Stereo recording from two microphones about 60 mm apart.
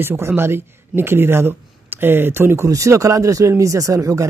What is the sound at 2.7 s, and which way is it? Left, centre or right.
Speech, right.